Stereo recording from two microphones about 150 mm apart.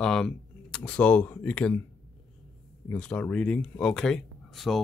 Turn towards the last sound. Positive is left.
turn(degrees=0)  # may be behind; listen again after turning